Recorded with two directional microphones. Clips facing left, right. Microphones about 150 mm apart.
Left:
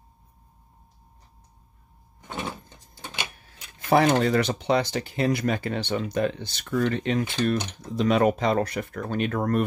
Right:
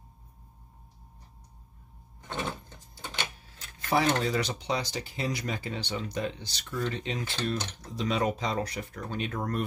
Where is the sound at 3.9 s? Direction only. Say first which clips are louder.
Left 7 dB; 60° left (ahead or behind).